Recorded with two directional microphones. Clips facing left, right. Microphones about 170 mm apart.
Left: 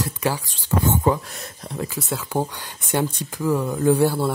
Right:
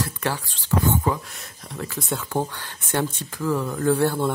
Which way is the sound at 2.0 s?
5° left (ahead or behind).